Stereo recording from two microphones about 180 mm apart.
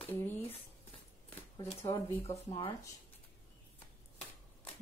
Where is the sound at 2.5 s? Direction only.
25° left (ahead or behind).